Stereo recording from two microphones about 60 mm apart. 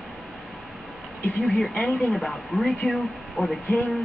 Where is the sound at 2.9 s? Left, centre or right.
Centre.